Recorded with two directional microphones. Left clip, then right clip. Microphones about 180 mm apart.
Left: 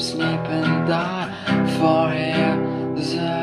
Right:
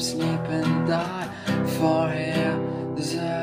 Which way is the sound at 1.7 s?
Centre (ahead or behind).